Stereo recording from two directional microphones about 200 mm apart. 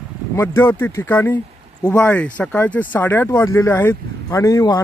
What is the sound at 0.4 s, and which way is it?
Speech, 10° left (ahead or behind).